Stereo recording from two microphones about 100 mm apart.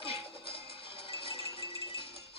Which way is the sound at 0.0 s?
65° left (ahead or behind).